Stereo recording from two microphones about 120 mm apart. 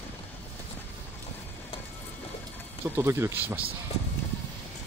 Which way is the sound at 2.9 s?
20° right (ahead or behind).